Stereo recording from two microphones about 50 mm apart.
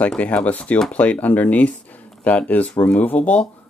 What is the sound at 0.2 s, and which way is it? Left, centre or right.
Speech, left.